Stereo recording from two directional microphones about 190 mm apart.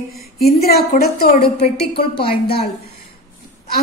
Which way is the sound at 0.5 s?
55° left (ahead or behind).